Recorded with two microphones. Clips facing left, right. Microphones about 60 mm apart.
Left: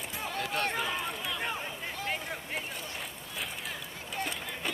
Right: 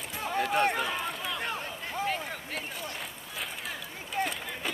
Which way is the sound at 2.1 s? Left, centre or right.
Centre.